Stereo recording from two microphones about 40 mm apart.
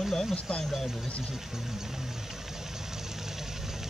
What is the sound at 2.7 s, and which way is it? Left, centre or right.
Vehicle, centre.